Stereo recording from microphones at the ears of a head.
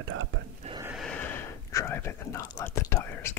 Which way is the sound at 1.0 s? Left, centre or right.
Left.